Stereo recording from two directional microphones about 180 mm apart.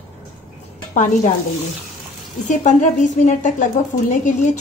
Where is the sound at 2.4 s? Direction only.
45° left (ahead or behind).